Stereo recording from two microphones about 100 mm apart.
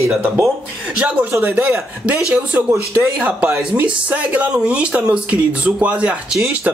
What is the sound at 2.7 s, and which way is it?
Speech, 25° right (ahead or behind).